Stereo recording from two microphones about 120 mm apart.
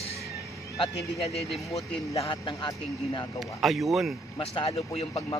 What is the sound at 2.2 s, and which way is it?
A man's voice, 40° left (ahead or behind).